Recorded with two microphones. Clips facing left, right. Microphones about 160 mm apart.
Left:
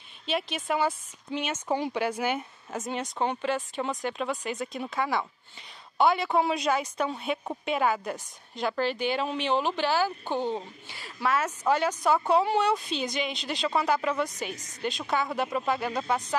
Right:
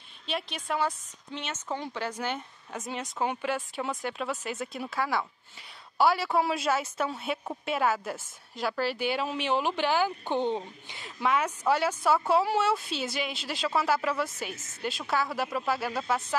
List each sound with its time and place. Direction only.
0.3 s a woman's voice: centre (ahead or behind); by 11.5 s 15° right (ahead or behind)
12.3 s speech: 5° right (ahead or behind)